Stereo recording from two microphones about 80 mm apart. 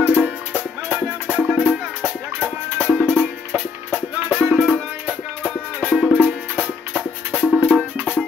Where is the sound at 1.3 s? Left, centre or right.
Centre.